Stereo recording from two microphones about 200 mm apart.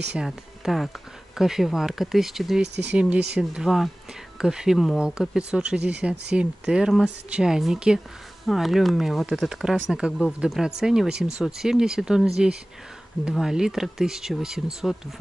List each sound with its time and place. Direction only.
0.1 s speech: centre (ahead or behind)
2.6 s speech: 60° right (ahead or behind)
2.9 s speech: 5° right (ahead or behind)